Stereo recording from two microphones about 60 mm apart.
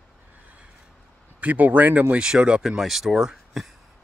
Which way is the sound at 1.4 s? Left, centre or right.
Right.